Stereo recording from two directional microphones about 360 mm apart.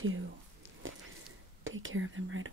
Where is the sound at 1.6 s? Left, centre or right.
Right.